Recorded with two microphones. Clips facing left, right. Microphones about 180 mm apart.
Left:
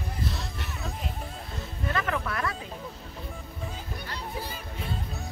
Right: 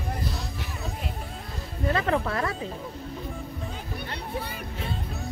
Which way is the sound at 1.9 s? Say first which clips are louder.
Right 5 dB; 30° right (ahead or behind).